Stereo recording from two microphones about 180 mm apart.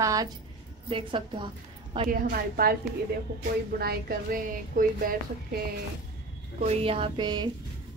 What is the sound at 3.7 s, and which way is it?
Speech, 55° right (ahead or behind).